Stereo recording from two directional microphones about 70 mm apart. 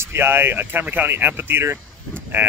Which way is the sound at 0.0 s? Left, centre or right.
Right.